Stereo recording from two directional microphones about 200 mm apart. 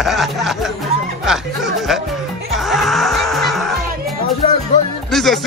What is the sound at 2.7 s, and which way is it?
Music, centre (ahead or behind).